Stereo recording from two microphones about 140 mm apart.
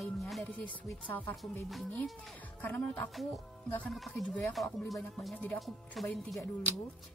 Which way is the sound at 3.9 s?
5° left (ahead or behind).